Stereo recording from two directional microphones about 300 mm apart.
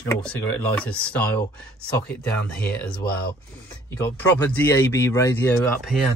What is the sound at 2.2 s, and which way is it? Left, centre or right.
Speech, centre.